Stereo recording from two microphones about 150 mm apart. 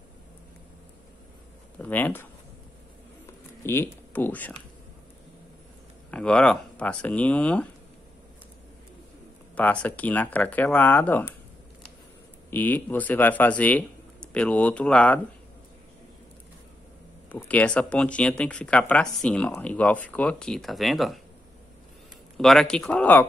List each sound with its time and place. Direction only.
1.8 s speech: 10° left (ahead or behind)
3.6 s speech: 15° left (ahead or behind)
6.0 s speech: 5° left (ahead or behind)
9.6 s speech: 10° left (ahead or behind)
12.4 s speech: 15° left (ahead or behind)
17.5 s speech: 10° left (ahead or behind)
22.4 s speech: 5° left (ahead or behind)